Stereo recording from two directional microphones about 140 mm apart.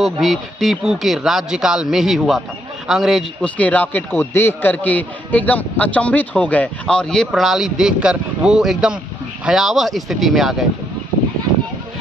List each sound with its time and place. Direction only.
0.0 s speech: centre (ahead or behind)